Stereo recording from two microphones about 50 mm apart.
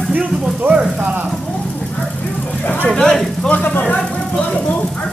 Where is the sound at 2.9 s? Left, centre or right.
Centre.